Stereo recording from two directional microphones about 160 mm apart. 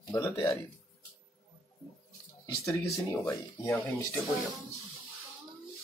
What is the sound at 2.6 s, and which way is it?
Speech, 20° left (ahead or behind).